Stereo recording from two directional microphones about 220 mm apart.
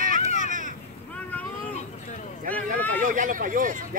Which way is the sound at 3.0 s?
40° right (ahead or behind).